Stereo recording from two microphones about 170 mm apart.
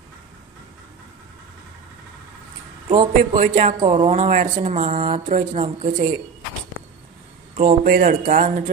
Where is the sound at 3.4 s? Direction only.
45° right (ahead or behind).